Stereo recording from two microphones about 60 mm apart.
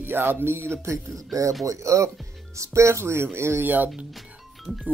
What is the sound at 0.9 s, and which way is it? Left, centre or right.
Speech, right.